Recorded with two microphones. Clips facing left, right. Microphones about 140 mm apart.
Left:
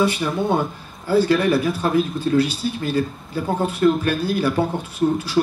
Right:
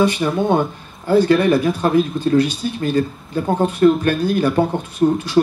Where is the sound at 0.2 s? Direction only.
40° right (ahead or behind).